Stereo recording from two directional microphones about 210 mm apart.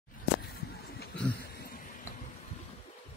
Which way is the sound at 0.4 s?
50° left (ahead or behind).